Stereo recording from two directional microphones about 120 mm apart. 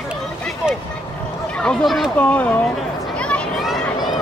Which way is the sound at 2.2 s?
10° left (ahead or behind).